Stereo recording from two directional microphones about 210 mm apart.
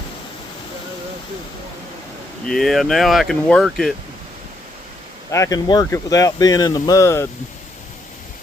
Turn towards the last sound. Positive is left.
turn(degrees=15)  # may be behind; listen again after turning